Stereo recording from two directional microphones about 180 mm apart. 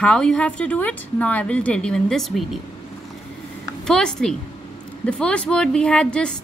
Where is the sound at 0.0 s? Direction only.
5° left (ahead or behind).